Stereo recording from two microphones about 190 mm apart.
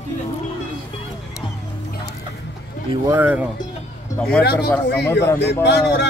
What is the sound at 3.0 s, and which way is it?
Speech, 10° right (ahead or behind).